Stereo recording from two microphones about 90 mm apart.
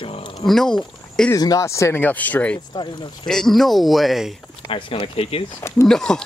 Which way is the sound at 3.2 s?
5° left (ahead or behind).